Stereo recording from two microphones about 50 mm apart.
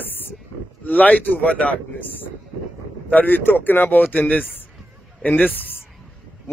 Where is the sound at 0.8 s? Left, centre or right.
Left.